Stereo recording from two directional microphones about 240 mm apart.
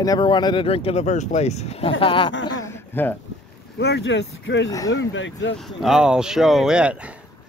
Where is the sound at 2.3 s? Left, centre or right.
Left.